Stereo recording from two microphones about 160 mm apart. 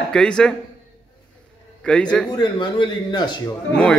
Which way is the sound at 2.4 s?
30° left (ahead or behind).